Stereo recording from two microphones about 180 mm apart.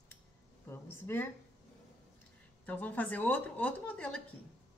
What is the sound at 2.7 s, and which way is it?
Speech, 10° left (ahead or behind).